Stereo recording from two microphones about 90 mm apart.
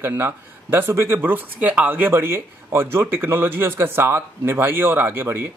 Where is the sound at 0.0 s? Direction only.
25° right (ahead or behind).